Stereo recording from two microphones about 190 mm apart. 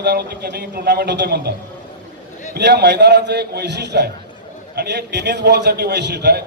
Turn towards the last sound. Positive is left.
turn(degrees=-60)  # may be behind; listen again after turning